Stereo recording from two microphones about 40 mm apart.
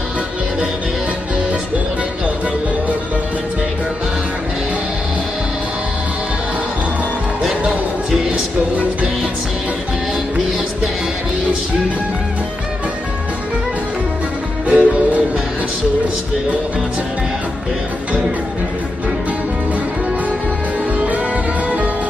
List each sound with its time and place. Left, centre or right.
14.7 s music: right
21.6 s music: right